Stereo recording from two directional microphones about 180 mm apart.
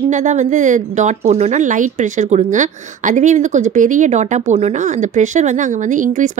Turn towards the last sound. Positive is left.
turn(degrees=-45)  # may be behind; listen again after turning